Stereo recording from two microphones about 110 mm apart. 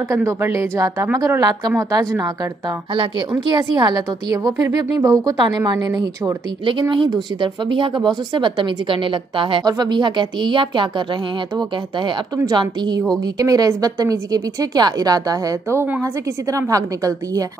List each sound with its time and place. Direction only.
0.1 s a woman's voice: 25° right (ahead or behind)
3.0 s a woman's voice: 45° right (ahead or behind)
6.6 s speech: 50° right (ahead or behind)
12.5 s a woman's voice: 40° right (ahead or behind)
15.8 s a woman's voice: 20° right (ahead or behind)